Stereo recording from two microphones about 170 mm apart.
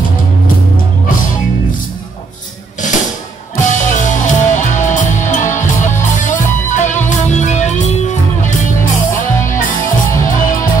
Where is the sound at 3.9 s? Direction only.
45° left (ahead or behind).